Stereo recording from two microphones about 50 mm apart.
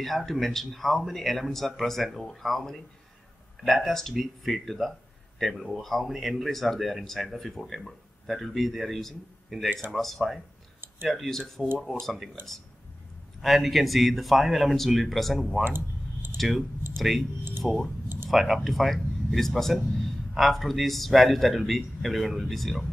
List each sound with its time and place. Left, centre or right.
0.0 s speech: centre
13.4 s speech: centre
15.6 s clicking: right
16.3 s speech: centre
17.6 s speech: centre
18.0 s a sound: right
18.3 s speech: centre